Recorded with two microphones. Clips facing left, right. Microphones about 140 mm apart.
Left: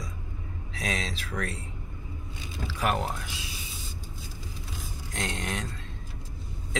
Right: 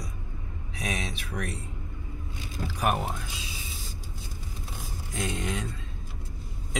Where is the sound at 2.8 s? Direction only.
90° left.